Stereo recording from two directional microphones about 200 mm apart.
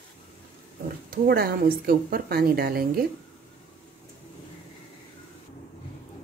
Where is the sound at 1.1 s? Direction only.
50° right (ahead or behind).